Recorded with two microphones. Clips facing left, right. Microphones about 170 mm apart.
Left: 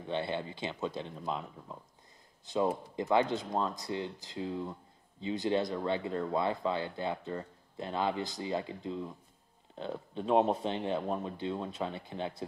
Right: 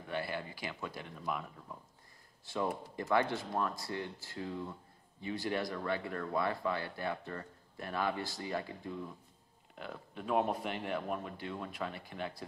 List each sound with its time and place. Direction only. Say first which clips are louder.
0.0 s speech: left 4 dB; 25° left (ahead or behind)